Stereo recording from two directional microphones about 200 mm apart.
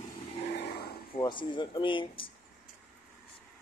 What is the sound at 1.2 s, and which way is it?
Speech, 25° left (ahead or behind).